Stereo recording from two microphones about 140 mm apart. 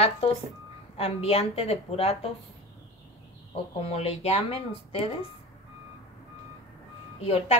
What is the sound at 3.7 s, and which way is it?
Speech, 45° left (ahead or behind).